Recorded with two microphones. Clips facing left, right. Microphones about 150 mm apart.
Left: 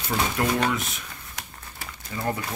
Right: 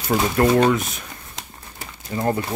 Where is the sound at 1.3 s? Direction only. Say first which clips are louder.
Right 2 dB; 25° right (ahead or behind).